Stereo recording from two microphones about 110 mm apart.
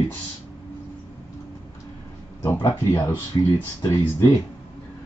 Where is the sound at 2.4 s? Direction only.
30° left (ahead or behind).